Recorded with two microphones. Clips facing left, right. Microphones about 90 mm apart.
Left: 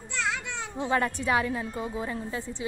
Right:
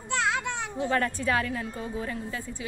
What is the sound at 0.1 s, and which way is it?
Children playing, 60° right (ahead or behind).